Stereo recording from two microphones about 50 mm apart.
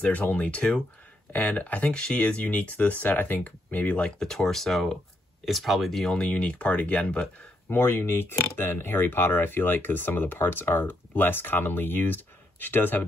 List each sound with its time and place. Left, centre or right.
0.0 s speech: left
1.3 s speech: left
1.9 s speech: centre
4.2 s speech: centre
6.1 s speech: left
7.7 s speech: left